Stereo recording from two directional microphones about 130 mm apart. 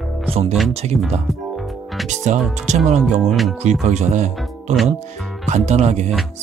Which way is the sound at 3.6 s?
65° right (ahead or behind).